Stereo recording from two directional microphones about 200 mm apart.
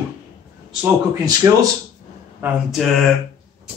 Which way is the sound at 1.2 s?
20° right (ahead or behind).